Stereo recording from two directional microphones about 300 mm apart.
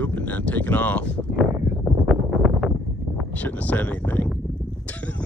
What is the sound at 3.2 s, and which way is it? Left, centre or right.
Speech, centre.